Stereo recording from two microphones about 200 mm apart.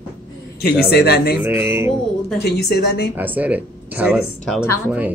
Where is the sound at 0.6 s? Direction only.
50° left (ahead or behind).